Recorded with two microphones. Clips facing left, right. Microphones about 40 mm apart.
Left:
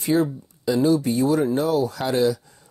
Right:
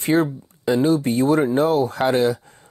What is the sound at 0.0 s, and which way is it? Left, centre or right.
Speech, right.